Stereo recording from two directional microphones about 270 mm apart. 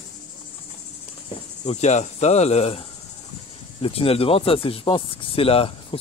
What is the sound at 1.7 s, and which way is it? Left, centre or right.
Speech, left.